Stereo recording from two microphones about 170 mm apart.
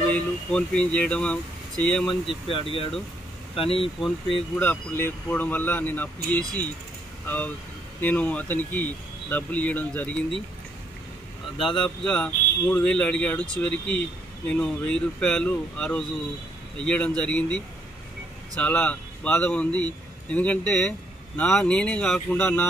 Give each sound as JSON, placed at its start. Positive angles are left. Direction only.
{"t": 0.1, "sound": "speech", "side_deg": 5}
{"t": 2.2, "sound": "speech", "side_deg": 30}
{"t": 4.0, "sound": "speech", "side_deg": 5}
{"t": 11.6, "sound": "speech", "side_deg": 5}
{"t": 18.6, "sound": "a man's voice", "side_deg": 10}